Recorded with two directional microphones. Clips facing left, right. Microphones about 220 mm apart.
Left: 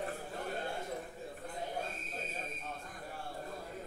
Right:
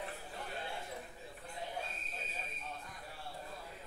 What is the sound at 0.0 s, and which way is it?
Chatter, 45° left (ahead or behind).